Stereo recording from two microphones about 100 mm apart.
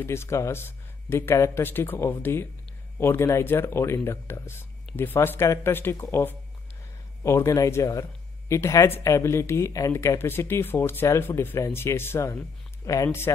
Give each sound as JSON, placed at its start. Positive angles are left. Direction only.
{"t": 0.0, "sound": "speech", "side_deg": 25}
{"t": 7.2, "sound": "speech", "side_deg": 30}